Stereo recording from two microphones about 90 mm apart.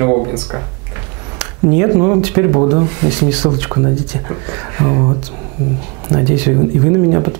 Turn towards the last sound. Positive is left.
turn(degrees=-15)  # may be behind; listen again after turning